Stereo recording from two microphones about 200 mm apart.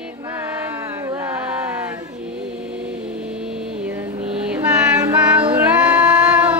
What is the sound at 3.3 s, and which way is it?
Music, 5° right (ahead or behind).